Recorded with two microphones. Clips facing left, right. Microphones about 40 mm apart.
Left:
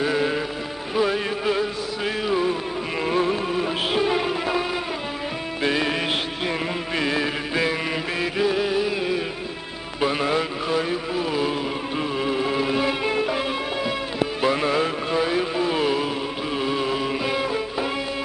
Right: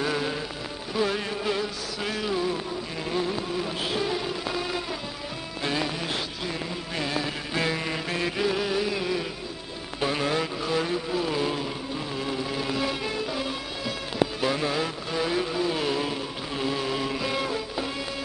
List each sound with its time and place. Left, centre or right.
0.0 s music: centre
3.1 s music: left
7.0 s music: left
7.5 s music: left
9.9 s vehicle: left
12.2 s music: left
15.1 s a sound: left
16.5 s music: left